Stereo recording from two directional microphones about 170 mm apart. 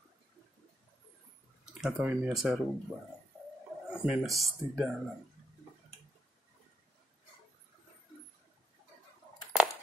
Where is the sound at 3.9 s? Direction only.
5° right (ahead or behind).